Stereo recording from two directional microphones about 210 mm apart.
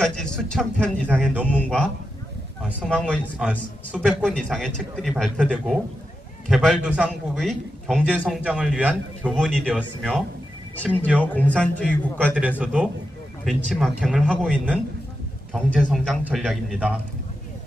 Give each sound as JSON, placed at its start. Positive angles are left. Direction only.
{"t": 0.0, "sound": "a man's voice", "side_deg": 5}
{"t": 1.0, "sound": "a man's voice", "side_deg": -10}
{"t": 1.6, "sound": "a man's voice", "side_deg": 5}
{"t": 2.9, "sound": "a man's voice", "side_deg": 5}
{"t": 11.3, "sound": "speech", "side_deg": 5}
{"t": 12.4, "sound": "a man's voice", "side_deg": -5}